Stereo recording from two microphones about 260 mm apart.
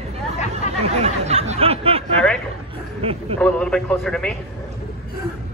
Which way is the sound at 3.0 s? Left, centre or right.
Right.